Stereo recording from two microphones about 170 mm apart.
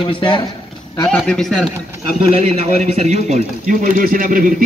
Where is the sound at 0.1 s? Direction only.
30° left (ahead or behind).